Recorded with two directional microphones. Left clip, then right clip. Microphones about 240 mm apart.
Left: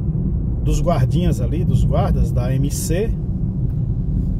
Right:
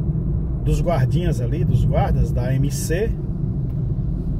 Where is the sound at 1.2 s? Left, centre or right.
Left.